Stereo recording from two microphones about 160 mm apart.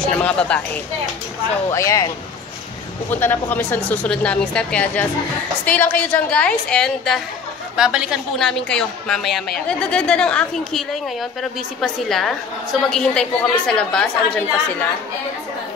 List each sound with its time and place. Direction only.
0.2 s speech: 5° left (ahead or behind)
1.7 s a woman's voice: 20° left (ahead or behind)